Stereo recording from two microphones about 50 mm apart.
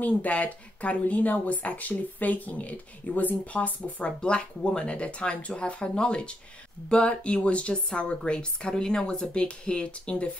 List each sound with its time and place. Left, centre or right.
0.0 s speech: left